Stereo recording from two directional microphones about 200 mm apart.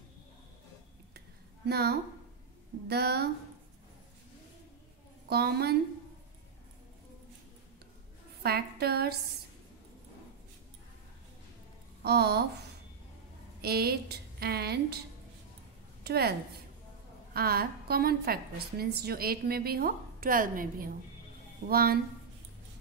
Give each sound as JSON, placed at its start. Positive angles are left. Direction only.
{"t": 1.7, "sound": "a woman's voice", "side_deg": -55}
{"t": 5.3, "sound": "a woman's voice", "side_deg": -55}
{"t": 8.4, "sound": "a woman's voice", "side_deg": -50}
{"t": 12.0, "sound": "a woman's voice", "side_deg": -55}
{"t": 16.0, "sound": "a woman's voice", "side_deg": -55}